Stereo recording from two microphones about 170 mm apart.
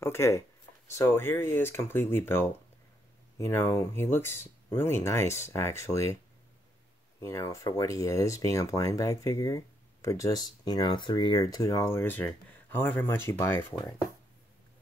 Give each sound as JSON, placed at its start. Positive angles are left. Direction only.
{"t": 0.0, "sound": "speech", "side_deg": 15}
{"t": 7.2, "sound": "speech", "side_deg": 20}